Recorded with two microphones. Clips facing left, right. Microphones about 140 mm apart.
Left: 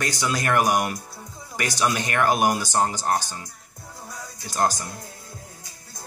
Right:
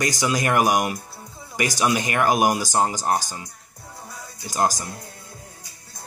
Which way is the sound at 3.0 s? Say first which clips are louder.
Right 1 dB; 5° right (ahead or behind).